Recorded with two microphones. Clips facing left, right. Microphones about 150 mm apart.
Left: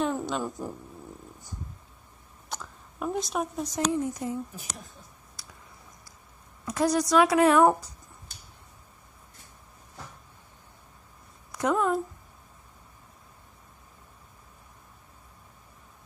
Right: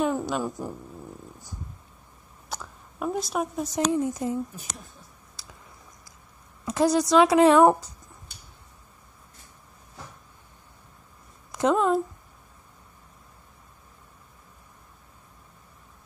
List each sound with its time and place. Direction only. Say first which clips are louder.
0.0 s a sound: right 3 dB; 5° right (ahead or behind)
2.5 s speech: right 2 dB; 5° right (ahead or behind)
3.9 s a woman's voice: right 3 dB; 25° right (ahead or behind)
6.6 s a woman's voice: right 3 dB; 25° right (ahead or behind)
11.5 s speech: right 4 dB; 25° right (ahead or behind)